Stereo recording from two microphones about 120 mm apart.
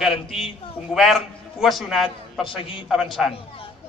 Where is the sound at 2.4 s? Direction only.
45° left (ahead or behind).